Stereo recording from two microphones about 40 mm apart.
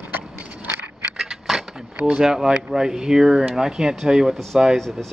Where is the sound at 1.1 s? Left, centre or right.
Centre.